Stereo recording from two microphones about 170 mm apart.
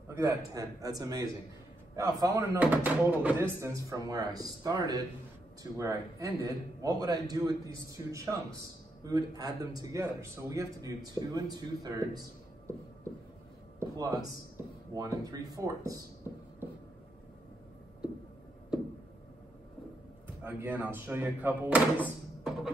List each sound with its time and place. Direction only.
0.1 s a man's voice: 15° right (ahead or behind)
2.6 s a man's voice: 10° right (ahead or behind)
13.7 s a sound: 20° right (ahead or behind)
14.9 s a man's voice: 20° right (ahead or behind)
18.7 s a sound: 5° right (ahead or behind)
20.4 s speech: 10° right (ahead or behind)